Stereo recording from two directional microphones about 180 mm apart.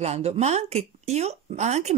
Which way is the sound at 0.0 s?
35° right (ahead or behind).